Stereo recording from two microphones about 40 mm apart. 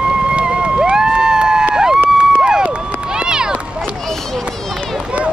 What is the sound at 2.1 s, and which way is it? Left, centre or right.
Crowd, right.